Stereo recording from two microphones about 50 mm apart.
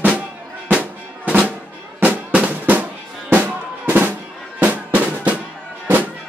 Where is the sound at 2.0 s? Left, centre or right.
Right.